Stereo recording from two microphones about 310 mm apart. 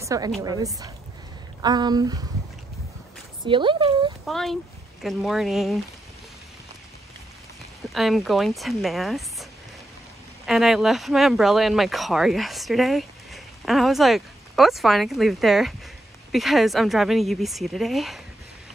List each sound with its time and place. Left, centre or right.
0.0 s a woman's voice: centre
3.4 s speech: centre
4.3 s speech: centre
7.9 s speech: centre